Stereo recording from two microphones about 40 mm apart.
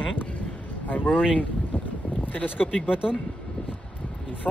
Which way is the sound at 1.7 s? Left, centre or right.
Left.